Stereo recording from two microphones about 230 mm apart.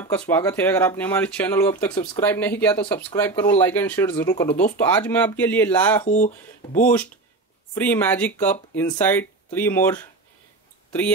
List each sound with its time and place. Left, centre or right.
0.0 s speech: centre
6.0 s speech: left
7.7 s speech: centre